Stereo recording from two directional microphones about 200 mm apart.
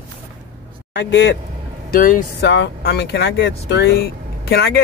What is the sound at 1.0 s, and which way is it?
Speech, 65° left (ahead or behind).